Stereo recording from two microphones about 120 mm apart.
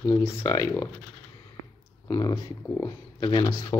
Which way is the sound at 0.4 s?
25° left (ahead or behind).